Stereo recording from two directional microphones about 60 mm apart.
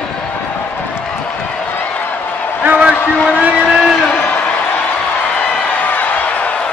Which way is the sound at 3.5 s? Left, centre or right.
Centre.